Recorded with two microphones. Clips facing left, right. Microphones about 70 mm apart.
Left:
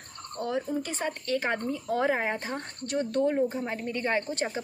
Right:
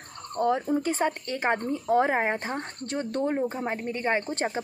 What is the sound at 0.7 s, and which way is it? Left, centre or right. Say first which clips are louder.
A woman's voice: right 6 dB; right.